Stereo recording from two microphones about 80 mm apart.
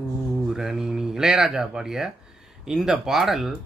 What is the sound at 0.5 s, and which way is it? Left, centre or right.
A man's voice, centre.